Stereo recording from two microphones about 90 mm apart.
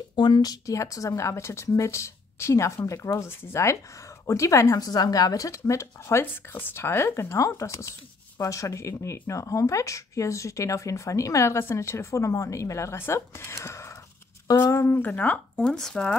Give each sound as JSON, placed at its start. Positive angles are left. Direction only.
{"t": 0.1, "sound": "speech", "side_deg": 60}
{"t": 15.0, "sound": "speech", "side_deg": 15}